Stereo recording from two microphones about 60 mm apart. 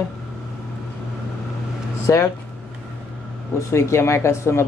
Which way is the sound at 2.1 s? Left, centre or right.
Left.